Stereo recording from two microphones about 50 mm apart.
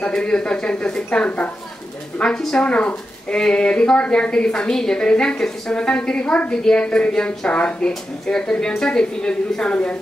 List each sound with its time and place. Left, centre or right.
0.0 s a woman's voice: centre
2.6 s a woman's voice: left
4.6 s a woman's voice: centre